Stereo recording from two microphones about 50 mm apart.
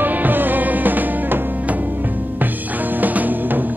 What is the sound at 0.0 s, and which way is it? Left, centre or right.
Music, right.